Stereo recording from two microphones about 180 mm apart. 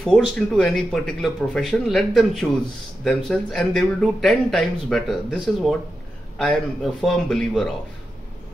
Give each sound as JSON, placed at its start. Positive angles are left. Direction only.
{"t": 0.0, "sound": "speech", "side_deg": 5}